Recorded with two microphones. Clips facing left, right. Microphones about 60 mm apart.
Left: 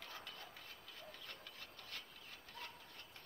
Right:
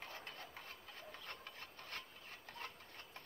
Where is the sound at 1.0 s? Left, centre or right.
Right.